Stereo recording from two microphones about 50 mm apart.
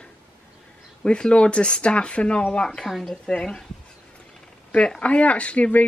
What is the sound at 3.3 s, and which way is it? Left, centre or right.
Speech, centre.